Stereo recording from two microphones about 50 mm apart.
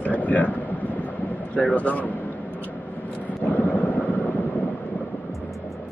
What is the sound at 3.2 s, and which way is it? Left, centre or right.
Vehicle, left.